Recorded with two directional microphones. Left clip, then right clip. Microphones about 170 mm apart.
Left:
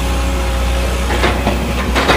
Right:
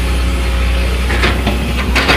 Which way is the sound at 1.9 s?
25° left (ahead or behind).